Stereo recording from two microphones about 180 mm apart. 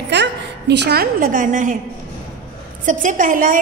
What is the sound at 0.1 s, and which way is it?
A woman's voice, 70° right (ahead or behind).